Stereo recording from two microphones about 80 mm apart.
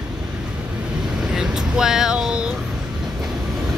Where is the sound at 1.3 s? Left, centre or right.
Centre.